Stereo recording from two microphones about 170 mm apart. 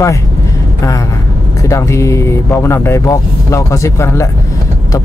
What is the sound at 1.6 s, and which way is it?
Speech, 15° left (ahead or behind).